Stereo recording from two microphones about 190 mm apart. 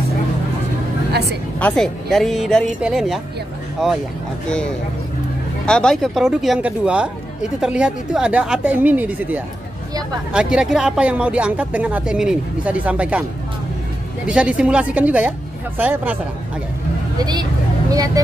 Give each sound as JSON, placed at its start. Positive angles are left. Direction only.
{"t": 1.6, "sound": "speech", "side_deg": 5}
{"t": 5.7, "sound": "speech", "side_deg": 5}
{"t": 14.2, "sound": "speech", "side_deg": -5}
{"t": 17.2, "sound": "speech", "side_deg": -20}